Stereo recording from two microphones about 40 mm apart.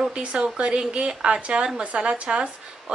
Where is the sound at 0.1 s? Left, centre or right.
Right.